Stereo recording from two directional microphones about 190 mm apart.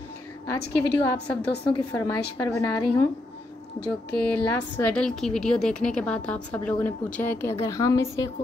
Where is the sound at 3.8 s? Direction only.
5° left (ahead or behind).